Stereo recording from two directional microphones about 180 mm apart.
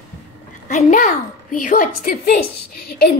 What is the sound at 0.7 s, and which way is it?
A woman's voice, 40° left (ahead or behind).